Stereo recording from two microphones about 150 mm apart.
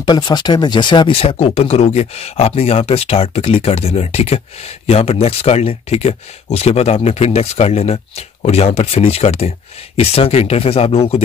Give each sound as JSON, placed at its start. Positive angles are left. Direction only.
{"t": 0.0, "sound": "speech", "side_deg": 25}